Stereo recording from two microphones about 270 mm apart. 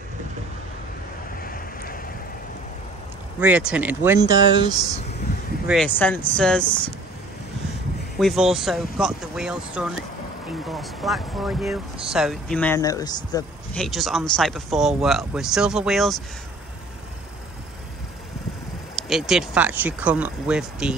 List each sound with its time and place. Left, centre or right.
1.4 s waves: left
3.3 s speech: centre
5.7 s speech: centre
8.2 s speech: centre
13.7 s speech: centre
18.9 s speech: centre